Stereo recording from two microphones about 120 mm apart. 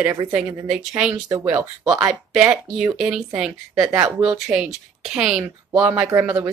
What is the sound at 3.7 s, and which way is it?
Speech, 25° right (ahead or behind).